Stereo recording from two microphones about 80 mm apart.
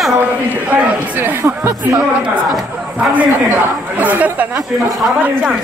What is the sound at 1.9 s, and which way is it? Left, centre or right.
A man's voice, centre.